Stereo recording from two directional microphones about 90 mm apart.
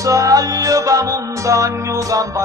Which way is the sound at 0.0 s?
40° right (ahead or behind).